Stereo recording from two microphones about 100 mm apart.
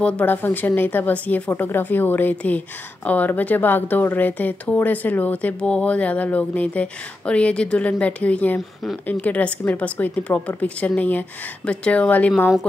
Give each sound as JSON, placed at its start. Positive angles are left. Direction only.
{"t": 0.0, "sound": "speech", "side_deg": 15}